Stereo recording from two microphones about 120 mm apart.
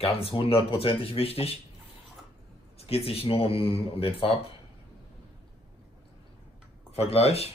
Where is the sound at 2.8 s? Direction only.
55° left (ahead or behind).